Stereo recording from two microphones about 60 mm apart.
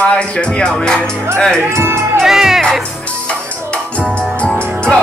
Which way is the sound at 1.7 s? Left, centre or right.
Right.